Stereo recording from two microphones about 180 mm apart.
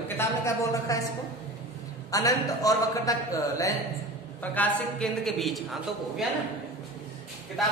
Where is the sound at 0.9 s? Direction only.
15° left (ahead or behind).